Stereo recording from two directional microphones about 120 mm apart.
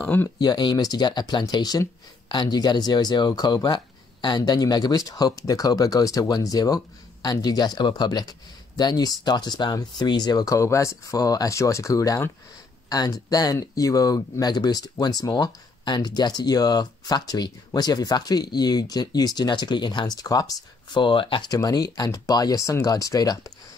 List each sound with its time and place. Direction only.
0.0 s speech: 15° left (ahead or behind)
0.4 s speech: 35° left (ahead or behind)
21.5 s speech: 30° left (ahead or behind)